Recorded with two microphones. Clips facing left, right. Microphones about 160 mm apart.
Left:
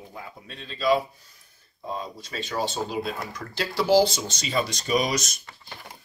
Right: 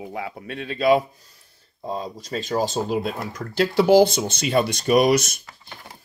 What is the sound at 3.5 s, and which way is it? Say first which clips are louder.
Speech: right 5 dB; 55° right (ahead or behind).